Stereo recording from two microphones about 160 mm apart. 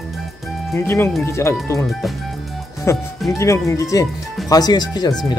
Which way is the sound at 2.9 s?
15° left (ahead or behind).